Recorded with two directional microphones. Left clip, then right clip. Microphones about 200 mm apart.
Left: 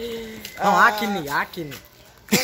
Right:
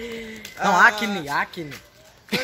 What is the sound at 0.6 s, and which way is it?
Speech, 20° right (ahead or behind).